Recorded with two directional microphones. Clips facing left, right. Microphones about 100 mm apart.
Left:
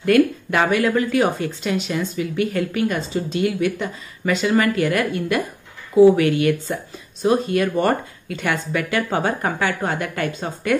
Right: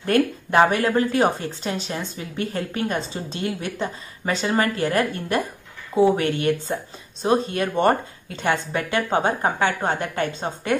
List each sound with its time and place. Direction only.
0.0 s a woman's voice: 35° right (ahead or behind)